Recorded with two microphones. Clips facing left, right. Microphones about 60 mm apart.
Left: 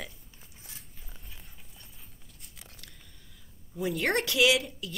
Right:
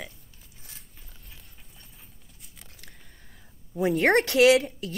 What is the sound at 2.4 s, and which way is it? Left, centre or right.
Scissors, centre.